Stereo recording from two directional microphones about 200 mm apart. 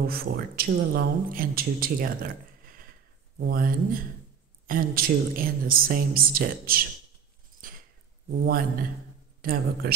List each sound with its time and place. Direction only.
0.0 s speech: 50° right (ahead or behind)
3.3 s speech: 45° right (ahead or behind)
7.6 s a sound: 45° right (ahead or behind)
8.3 s speech: 50° right (ahead or behind)